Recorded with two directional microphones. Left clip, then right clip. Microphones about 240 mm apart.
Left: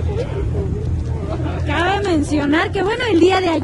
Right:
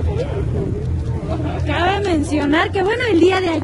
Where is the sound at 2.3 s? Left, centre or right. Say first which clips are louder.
Even; centre.